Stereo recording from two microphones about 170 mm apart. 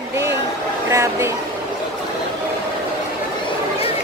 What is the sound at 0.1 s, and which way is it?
Vehicle, 15° right (ahead or behind).